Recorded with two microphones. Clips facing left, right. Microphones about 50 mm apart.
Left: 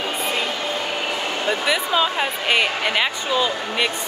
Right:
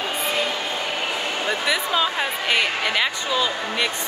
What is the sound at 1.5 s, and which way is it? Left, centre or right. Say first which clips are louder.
Speech: left 2 dB; centre.